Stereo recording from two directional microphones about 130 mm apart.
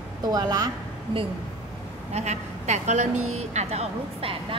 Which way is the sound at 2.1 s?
60° right (ahead or behind).